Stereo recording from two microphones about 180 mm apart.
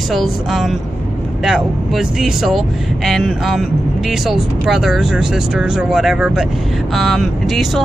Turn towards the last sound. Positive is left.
turn(degrees=0)  # may be behind; listen again after turning